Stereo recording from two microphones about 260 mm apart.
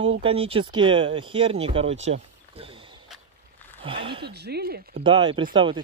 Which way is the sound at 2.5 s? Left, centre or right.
Right.